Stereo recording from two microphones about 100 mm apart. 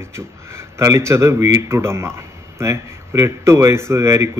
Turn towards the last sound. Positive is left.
turn(degrees=-25)  # may be behind; listen again after turning